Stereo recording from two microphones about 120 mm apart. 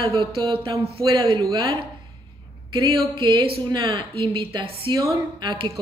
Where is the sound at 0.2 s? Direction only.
50° right (ahead or behind).